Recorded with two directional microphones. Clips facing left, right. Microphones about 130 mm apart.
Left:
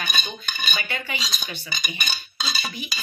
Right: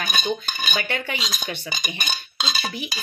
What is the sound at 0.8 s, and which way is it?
Speech, 60° right (ahead or behind).